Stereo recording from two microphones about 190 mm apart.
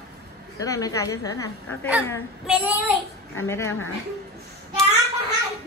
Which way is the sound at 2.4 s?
10° right (ahead or behind).